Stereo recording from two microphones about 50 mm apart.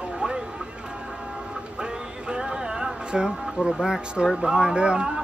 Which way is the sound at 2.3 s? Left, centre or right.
Centre.